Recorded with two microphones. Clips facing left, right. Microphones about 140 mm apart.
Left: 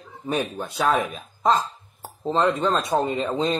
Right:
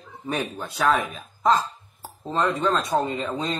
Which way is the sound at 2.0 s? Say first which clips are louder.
Left 3 dB; 25° left (ahead or behind).